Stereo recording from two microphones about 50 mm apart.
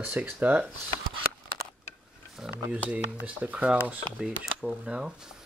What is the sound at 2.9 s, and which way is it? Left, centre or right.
Speech, right.